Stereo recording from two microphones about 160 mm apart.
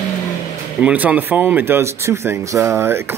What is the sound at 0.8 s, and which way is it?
Speech, 10° right (ahead or behind).